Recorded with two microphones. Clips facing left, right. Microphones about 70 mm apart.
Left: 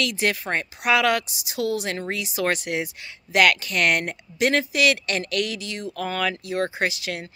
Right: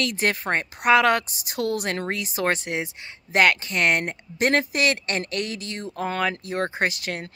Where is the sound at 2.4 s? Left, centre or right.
Right.